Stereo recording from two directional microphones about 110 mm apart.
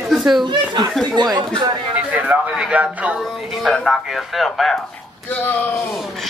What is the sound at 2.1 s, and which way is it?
A man's voice, 15° right (ahead or behind).